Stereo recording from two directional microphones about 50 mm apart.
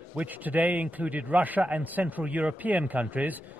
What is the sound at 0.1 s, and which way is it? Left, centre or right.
A man's voice, right.